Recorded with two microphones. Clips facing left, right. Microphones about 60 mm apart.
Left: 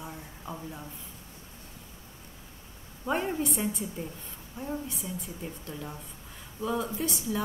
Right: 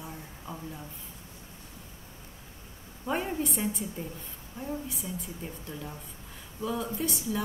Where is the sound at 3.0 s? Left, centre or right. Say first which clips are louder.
Left 1 dB; centre.